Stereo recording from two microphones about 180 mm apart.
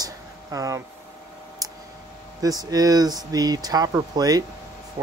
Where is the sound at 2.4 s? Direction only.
20° right (ahead or behind).